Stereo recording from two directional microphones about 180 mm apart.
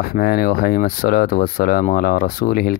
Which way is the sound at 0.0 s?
55° left (ahead or behind).